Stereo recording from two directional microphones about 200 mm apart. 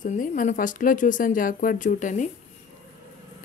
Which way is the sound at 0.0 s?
40° left (ahead or behind).